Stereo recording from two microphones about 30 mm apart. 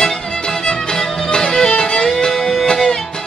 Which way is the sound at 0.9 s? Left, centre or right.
Left.